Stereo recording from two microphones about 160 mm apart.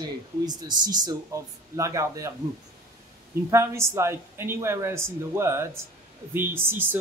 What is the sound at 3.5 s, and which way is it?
Speech, 15° right (ahead or behind).